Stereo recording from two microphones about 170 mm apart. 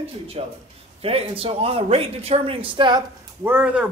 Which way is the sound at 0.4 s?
35° right (ahead or behind).